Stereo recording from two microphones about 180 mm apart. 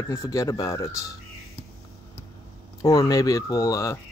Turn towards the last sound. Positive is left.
turn(degrees=20)  # may be behind; listen again after turning